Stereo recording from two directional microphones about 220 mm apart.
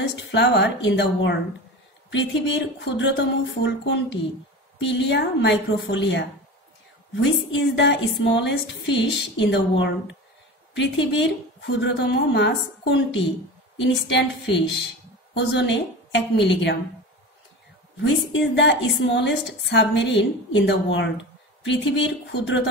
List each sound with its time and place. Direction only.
0.1 s a sound: 55° left (ahead or behind)
0.8 s a woman's voice: 55° left (ahead or behind)
18.5 s a woman's voice: 55° left (ahead or behind)